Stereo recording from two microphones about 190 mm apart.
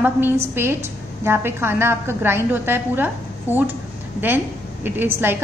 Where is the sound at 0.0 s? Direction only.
10° right (ahead or behind).